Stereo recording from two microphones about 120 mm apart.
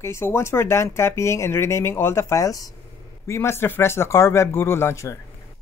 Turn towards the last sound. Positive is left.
turn(degrees=20)  # may be behind; listen again after turning